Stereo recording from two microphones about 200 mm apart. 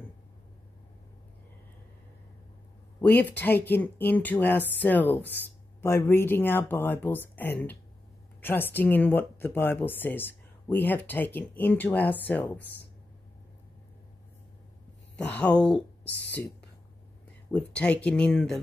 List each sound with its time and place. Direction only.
3.0 s speech: 10° left (ahead or behind)
15.1 s a woman's voice: 5° left (ahead or behind)
17.5 s speech: 5° left (ahead or behind)